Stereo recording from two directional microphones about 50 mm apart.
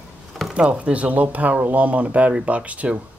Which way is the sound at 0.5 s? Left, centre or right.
Right.